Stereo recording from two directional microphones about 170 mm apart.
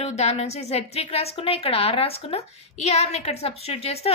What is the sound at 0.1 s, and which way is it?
A woman's voice, 40° left (ahead or behind).